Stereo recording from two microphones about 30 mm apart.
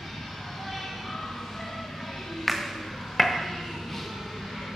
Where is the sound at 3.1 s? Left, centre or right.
Centre.